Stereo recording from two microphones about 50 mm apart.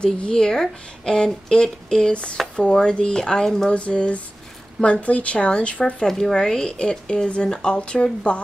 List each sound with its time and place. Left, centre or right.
0.0 s speech: centre
3.7 s speech: left
6.0 s speech: centre; by 8.4 s left